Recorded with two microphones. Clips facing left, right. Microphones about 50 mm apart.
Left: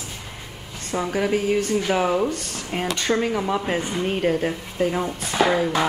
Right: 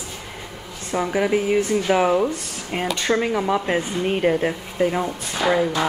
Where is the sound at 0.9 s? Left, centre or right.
Centre.